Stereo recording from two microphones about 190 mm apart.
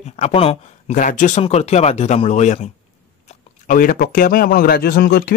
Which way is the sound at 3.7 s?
45° left (ahead or behind).